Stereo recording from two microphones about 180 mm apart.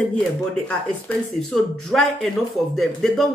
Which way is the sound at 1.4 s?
Centre (ahead or behind).